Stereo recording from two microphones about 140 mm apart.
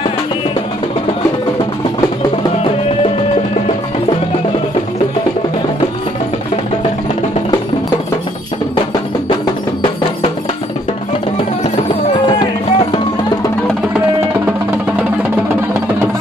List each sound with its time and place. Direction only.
12.3 s music: 35° left (ahead or behind)